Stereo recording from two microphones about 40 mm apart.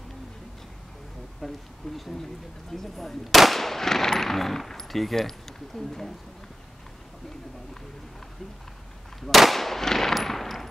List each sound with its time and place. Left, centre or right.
1.4 s machine gun: centre
9.2 s machine gun: centre